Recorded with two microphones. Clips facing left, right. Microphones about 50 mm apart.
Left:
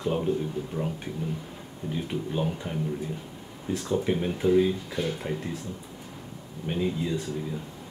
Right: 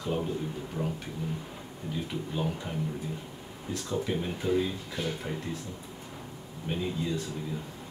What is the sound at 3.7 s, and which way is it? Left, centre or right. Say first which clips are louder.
Speech: left 5 dB; left.